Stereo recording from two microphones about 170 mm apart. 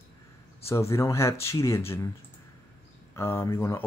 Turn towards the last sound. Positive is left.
turn(degrees=15)  # may be behind; listen again after turning